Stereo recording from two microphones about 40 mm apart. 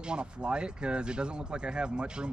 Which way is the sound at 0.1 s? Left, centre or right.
Right.